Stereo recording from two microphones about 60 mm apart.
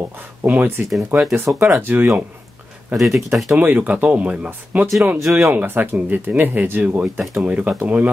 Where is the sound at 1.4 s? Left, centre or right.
Right.